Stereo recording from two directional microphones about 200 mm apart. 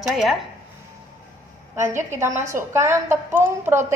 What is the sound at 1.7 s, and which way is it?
A woman's voice, 10° right (ahead or behind).